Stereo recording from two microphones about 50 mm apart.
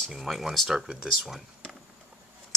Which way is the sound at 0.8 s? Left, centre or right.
Centre.